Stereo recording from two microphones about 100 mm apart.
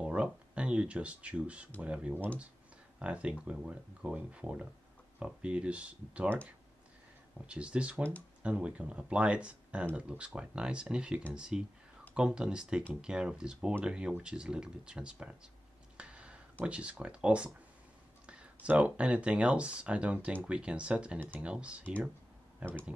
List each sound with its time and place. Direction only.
0.0 s speech: 10° right (ahead or behind)
7.4 s speech: 10° right (ahead or behind)
16.0 s a sound: 10° right (ahead or behind)
16.6 s speech: 10° right (ahead or behind)